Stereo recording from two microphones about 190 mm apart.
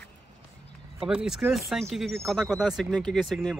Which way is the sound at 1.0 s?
5° right (ahead or behind).